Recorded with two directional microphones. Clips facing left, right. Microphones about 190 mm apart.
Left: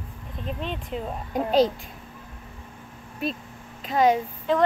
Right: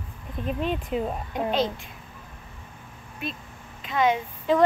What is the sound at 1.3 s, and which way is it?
Speech, 40° left (ahead or behind).